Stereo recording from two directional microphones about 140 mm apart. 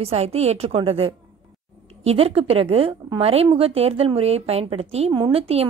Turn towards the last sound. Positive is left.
turn(degrees=-45)  # may be behind; listen again after turning